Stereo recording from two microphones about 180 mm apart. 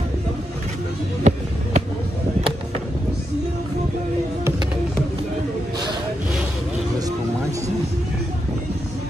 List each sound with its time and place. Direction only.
1.3 s music: 40° right (ahead or behind)